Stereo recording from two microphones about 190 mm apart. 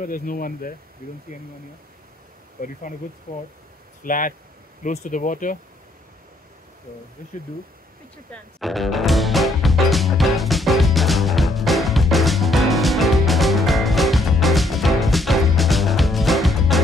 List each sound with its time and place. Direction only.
0.0 s speech: 45° left (ahead or behind)
2.6 s speech: 50° left (ahead or behind)
4.0 s speech: 45° left (ahead or behind)
8.3 s music: centre (ahead or behind)